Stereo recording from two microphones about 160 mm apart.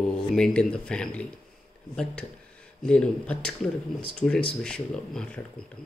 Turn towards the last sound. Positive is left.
turn(degrees=5)  # may be behind; listen again after turning